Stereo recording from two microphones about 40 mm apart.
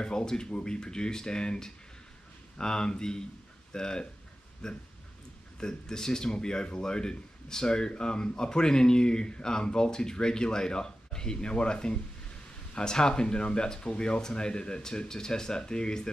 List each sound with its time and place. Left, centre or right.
0.0 s speech: centre